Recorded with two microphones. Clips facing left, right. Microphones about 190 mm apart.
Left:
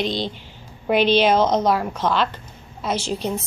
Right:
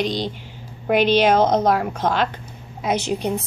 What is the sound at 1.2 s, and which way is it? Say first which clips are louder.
Speech: right 1 dB; 55° right (ahead or behind).